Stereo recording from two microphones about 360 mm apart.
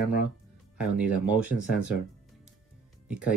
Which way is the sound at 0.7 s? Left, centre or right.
Centre.